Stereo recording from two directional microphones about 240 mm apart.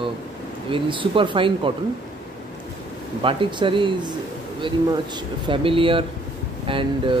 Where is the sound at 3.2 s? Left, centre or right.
Right.